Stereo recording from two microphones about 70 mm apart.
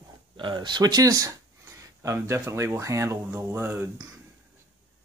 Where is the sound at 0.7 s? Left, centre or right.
Right.